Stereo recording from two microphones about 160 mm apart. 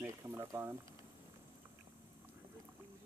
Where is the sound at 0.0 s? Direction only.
15° right (ahead or behind).